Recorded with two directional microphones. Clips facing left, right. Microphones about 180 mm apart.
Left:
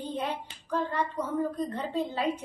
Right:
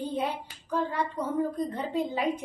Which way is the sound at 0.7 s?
10° right (ahead or behind).